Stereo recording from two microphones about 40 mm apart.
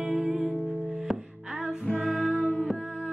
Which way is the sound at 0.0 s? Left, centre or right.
Right.